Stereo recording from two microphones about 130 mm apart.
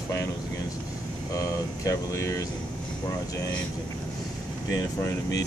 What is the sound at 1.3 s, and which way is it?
A man's voice, 25° left (ahead or behind).